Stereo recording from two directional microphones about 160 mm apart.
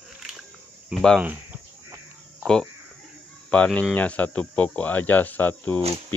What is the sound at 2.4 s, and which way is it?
A man's voice, 5° left (ahead or behind).